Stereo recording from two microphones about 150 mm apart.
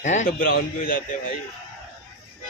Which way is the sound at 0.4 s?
75° left (ahead or behind).